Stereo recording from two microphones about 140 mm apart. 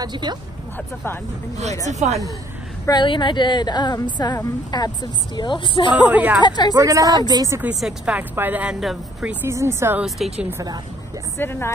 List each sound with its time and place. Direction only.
0.0 s speech: 30° right (ahead or behind)
1.9 s speech: 55° right (ahead or behind)
2.9 s a woman's voice: 35° left (ahead or behind)
6.0 s speech: 10° right (ahead or behind)
6.4 s a woman's voice: 30° left (ahead or behind)
6.7 s speech: 25° right (ahead or behind)
7.6 s speech: 5° right (ahead or behind)
9.3 s speech: 20° right (ahead or behind)
10.0 s a woman's voice: centre (ahead or behind)
11.3 s a woman's voice: 15° left (ahead or behind)